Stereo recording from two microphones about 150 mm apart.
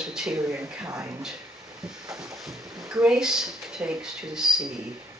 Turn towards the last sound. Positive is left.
turn(degrees=-5)  # may be behind; listen again after turning